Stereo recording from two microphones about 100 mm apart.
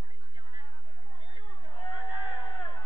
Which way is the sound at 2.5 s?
15° left (ahead or behind).